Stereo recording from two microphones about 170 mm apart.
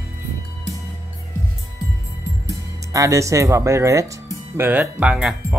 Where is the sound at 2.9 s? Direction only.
20° right (ahead or behind).